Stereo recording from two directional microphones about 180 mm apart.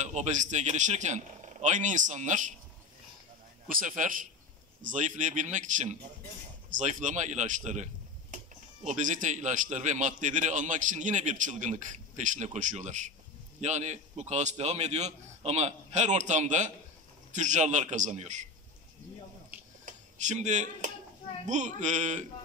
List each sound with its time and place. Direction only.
0.0 s a man's voice: 40° right (ahead or behind)
3.6 s a man's voice: 50° right (ahead or behind)
19.8 s a man's voice: 45° right (ahead or behind)